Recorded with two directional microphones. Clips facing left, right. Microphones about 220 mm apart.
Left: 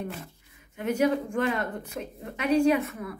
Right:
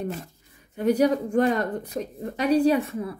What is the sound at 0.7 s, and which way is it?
Speech, 35° right (ahead or behind).